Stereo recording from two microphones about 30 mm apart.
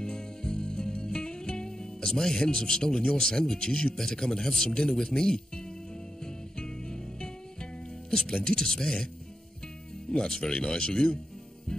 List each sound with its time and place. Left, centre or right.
0.0 s music: left
2.4 s speech: left
6.6 s music: left
8.1 s speech: left
10.1 s speech: left